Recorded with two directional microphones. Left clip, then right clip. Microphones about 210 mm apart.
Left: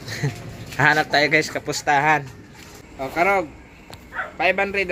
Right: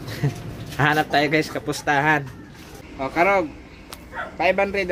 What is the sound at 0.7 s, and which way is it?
A man's voice, 10° left (ahead or behind).